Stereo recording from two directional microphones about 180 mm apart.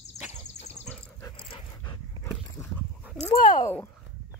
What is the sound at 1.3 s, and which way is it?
Dog, 30° left (ahead or behind).